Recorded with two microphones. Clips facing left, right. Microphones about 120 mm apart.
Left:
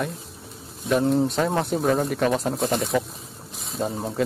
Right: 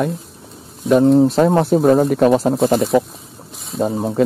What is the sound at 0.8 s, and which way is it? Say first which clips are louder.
Speech: right 8 dB; centre (ahead or behind).